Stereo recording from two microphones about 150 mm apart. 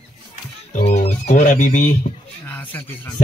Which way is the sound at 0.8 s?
45° left (ahead or behind).